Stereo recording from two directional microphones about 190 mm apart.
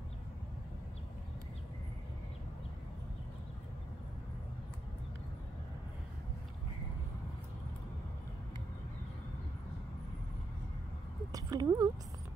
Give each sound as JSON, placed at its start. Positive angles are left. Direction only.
{"t": 11.3, "sound": "speech", "side_deg": -20}